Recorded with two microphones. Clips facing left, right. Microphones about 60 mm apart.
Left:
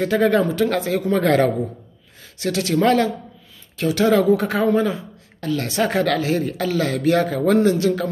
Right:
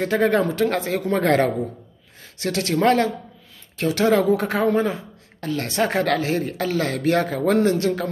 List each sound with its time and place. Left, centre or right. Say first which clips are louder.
0.0 s speech: left 2 dB; right